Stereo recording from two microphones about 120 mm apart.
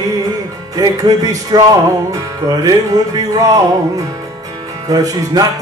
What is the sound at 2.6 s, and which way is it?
Music, 30° right (ahead or behind).